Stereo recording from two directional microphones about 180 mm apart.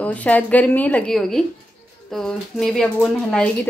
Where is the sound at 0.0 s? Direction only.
10° left (ahead or behind).